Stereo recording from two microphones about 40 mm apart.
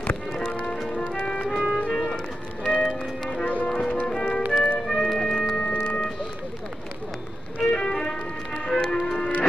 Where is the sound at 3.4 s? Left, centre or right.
Left.